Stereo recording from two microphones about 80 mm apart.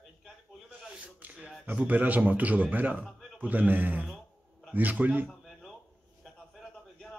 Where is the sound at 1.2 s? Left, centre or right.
Centre.